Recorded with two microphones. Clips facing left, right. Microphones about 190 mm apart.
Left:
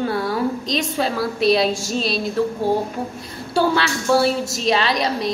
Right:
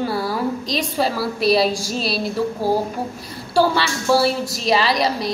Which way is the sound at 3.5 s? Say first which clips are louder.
Right 1 dB; centre (ahead or behind).